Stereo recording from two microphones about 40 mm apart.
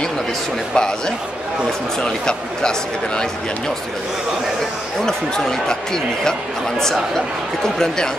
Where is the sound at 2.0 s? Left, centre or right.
Left.